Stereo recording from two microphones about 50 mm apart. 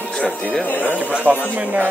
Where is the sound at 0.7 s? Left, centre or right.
Left.